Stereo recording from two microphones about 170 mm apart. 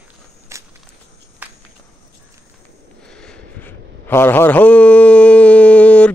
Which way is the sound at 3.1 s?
5° left (ahead or behind).